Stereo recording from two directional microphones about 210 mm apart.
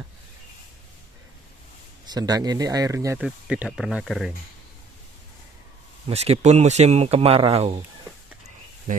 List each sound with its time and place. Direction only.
2.0 s speech: 20° right (ahead or behind)
3.2 s speech: 5° right (ahead or behind)
6.0 s speech: 30° right (ahead or behind)
8.9 s speech: 40° right (ahead or behind)